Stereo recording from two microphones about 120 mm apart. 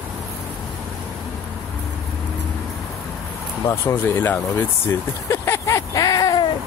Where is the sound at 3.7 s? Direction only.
20° left (ahead or behind).